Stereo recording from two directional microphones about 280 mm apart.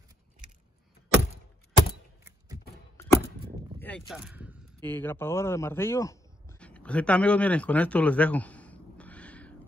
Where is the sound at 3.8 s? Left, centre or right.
Centre.